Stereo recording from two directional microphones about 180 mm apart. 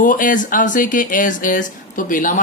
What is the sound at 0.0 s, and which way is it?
Speech, 45° left (ahead or behind).